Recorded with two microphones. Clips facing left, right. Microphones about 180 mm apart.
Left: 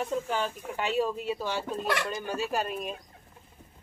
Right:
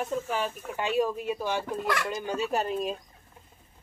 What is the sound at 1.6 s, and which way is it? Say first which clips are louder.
Speech: right 1 dB; 20° left (ahead or behind).